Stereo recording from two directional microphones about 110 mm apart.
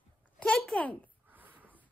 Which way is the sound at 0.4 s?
5° left (ahead or behind).